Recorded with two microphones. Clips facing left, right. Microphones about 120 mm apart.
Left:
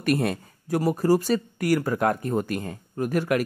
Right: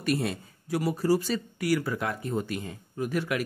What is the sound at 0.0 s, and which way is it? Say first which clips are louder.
Speech: left 4 dB; 55° left (ahead or behind).